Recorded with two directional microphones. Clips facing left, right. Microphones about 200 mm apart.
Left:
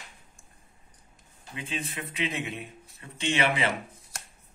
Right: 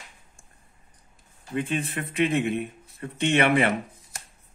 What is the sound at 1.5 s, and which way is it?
Speech, 55° right (ahead or behind).